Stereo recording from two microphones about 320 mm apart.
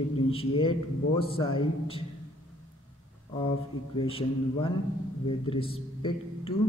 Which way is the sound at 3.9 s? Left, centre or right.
Centre.